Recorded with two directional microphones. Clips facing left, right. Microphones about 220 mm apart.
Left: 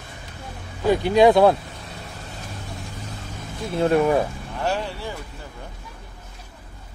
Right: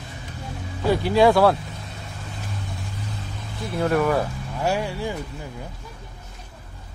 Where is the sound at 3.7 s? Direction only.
25° left (ahead or behind).